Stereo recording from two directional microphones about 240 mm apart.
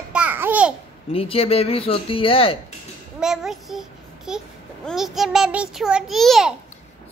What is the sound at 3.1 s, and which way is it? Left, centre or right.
A child's voice, centre.